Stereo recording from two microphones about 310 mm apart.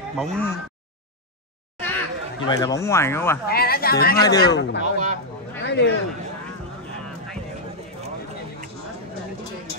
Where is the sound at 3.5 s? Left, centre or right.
Left.